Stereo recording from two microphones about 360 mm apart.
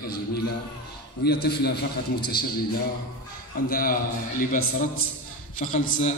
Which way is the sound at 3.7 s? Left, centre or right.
Left.